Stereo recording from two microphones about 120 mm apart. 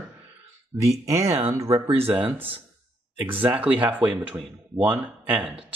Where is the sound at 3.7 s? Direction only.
15° right (ahead or behind).